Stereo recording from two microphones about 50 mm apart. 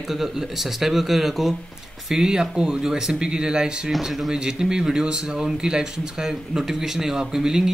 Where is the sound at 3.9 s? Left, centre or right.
Centre.